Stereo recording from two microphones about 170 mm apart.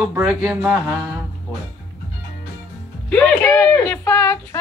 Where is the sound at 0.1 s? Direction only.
10° right (ahead or behind).